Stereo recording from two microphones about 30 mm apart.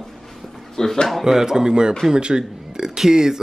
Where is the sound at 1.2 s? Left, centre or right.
Centre.